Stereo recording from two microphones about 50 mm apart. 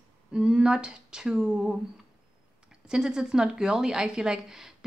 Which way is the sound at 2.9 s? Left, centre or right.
Centre.